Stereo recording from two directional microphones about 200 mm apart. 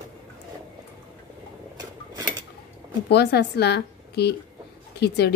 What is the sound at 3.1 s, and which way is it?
Speech, 55° left (ahead or behind).